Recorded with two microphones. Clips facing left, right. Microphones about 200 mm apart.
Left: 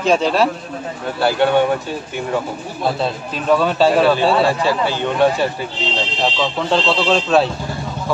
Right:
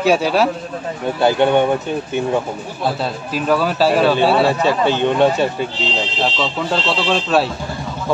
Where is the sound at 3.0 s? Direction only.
5° right (ahead or behind).